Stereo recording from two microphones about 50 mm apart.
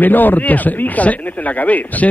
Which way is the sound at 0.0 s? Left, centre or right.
Left.